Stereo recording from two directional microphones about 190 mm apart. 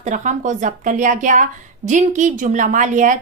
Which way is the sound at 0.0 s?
40° right (ahead or behind).